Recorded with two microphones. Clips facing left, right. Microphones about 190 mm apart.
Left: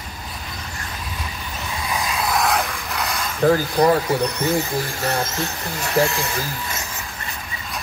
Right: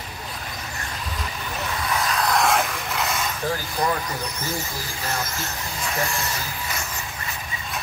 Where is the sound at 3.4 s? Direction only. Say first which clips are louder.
Left 12 dB; 50° left (ahead or behind).